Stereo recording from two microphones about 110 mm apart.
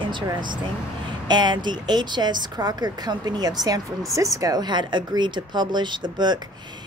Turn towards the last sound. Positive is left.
turn(degrees=-40)  # may be behind; listen again after turning